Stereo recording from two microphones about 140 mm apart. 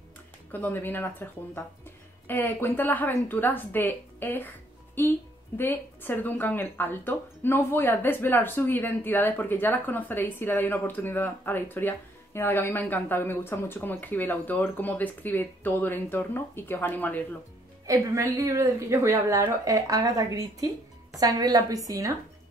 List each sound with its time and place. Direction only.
0.5 s speech: 15° left (ahead or behind)
17.8 s a woman's voice: 20° right (ahead or behind)